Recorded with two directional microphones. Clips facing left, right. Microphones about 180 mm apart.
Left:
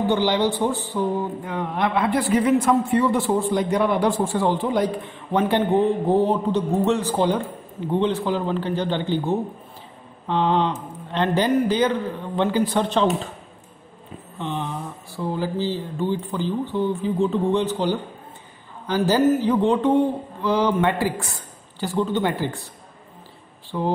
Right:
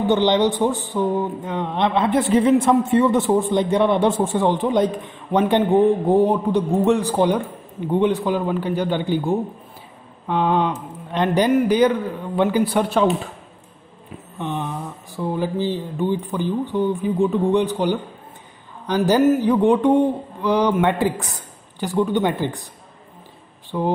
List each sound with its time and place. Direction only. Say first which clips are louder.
0.0 s a man's voice: right 3 dB; 20° right (ahead or behind)
14.4 s a man's voice: right 2 dB; 15° right (ahead or behind)
23.7 s a man's voice: right 2 dB; 15° right (ahead or behind)